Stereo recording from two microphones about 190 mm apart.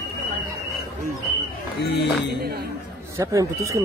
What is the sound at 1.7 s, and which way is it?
Speech, 60° left (ahead or behind).